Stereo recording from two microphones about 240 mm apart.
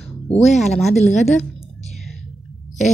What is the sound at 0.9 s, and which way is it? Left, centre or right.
Speech, left.